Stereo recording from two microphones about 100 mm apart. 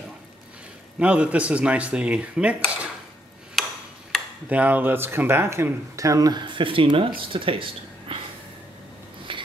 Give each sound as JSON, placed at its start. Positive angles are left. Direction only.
{"t": 0.9, "sound": "speech", "side_deg": -15}
{"t": 4.1, "sound": "a sound", "side_deg": 5}
{"t": 4.5, "sound": "speech", "side_deg": -15}
{"t": 6.4, "sound": "speech", "side_deg": -55}
{"t": 9.3, "sound": "wheeze", "side_deg": -55}